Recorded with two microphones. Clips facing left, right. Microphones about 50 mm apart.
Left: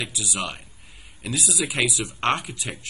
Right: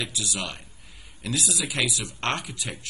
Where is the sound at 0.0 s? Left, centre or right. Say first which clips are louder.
Left 2 dB; centre.